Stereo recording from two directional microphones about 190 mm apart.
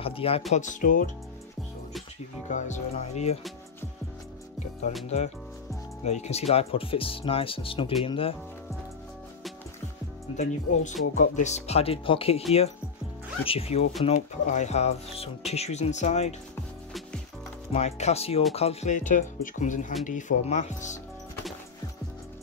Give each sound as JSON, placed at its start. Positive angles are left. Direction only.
{"t": 0.0, "sound": "speech", "side_deg": 30}
{"t": 0.5, "sound": "speech", "side_deg": 40}
{"t": 2.5, "sound": "speech", "side_deg": 40}
{"t": 4.9, "sound": "speech", "side_deg": 35}
{"t": 6.0, "sound": "speech", "side_deg": 35}
{"t": 10.3, "sound": "speech", "side_deg": 40}
{"t": 17.6, "sound": "speech", "side_deg": 35}